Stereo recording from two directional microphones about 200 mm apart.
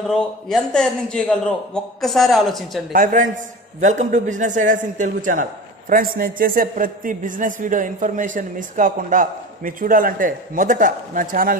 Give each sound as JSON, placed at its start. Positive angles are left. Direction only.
{"t": 0.0, "sound": "a man's voice", "side_deg": 0}
{"t": 2.9, "sound": "a man's voice", "side_deg": -40}